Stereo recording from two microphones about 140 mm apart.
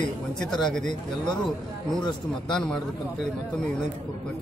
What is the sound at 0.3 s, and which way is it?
Speech, 5° left (ahead or behind).